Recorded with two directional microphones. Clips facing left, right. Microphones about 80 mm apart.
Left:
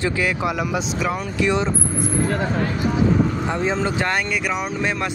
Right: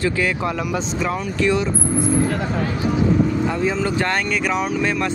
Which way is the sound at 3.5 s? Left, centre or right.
Left.